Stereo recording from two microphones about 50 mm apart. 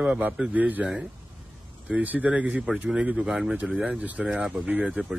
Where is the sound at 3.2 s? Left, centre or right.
Centre.